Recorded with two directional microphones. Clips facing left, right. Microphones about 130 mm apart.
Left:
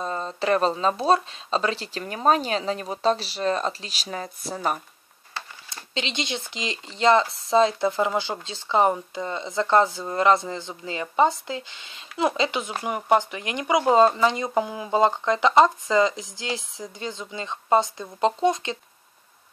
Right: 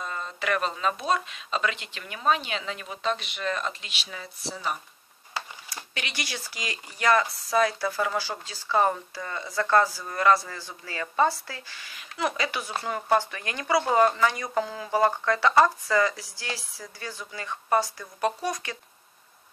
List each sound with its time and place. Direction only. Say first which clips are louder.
0.0 s speech: left 6 dB; 35° left (ahead or behind); by 4.7 s 50° left (ahead or behind)
5.9 s speech: left 7 dB; 20° left (ahead or behind)